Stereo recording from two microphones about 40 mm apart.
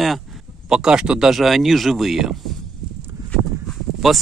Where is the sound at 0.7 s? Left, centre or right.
Centre.